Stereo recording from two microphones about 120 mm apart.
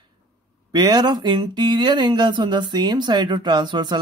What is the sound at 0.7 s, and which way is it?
Speech, 35° right (ahead or behind).